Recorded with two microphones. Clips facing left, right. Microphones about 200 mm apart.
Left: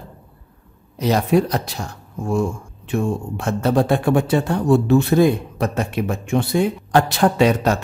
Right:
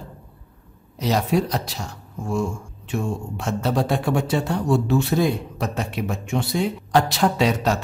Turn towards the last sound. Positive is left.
turn(degrees=55)  # may be behind; listen again after turning